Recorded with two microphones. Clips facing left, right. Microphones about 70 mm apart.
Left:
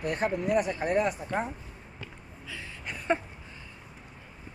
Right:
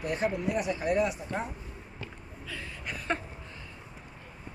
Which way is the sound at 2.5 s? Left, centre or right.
Centre.